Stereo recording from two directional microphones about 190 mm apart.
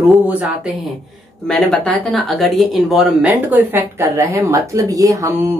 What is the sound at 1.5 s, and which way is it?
Speech, 5° left (ahead or behind).